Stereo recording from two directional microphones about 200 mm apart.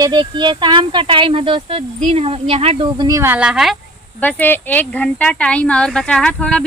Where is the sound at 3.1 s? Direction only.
10° right (ahead or behind).